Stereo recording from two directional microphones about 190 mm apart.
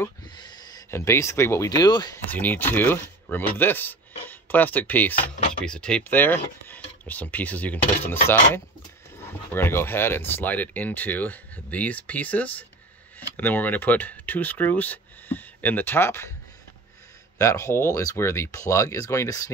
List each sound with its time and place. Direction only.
0.0 s speech: 20° left (ahead or behind)
2.3 s speech: 10° left (ahead or behind)
17.4 s speech: 15° left (ahead or behind)